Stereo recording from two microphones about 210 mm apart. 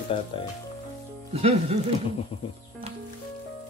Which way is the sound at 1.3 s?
30° right (ahead or behind).